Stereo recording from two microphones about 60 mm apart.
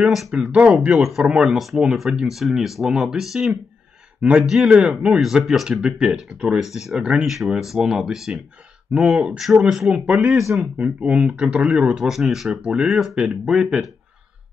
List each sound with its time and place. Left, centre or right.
0.3 s speech: centre
0.9 s speech: centre
1.3 s speech: centre
1.6 s speech: centre
7.0 s speech: centre
7.2 s speech: centre
9.9 s speech: centre
12.0 s speech: centre
12.4 s speech: centre